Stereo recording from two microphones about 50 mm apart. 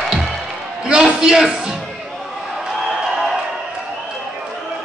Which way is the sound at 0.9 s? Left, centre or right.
Centre.